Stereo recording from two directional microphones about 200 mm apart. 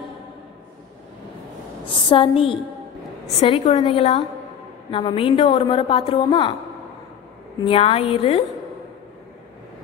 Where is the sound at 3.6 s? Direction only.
30° left (ahead or behind).